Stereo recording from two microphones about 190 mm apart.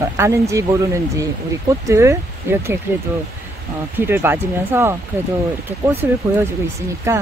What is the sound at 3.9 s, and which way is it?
Speech, 10° right (ahead or behind).